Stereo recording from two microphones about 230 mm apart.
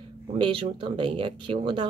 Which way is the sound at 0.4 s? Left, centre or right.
Right.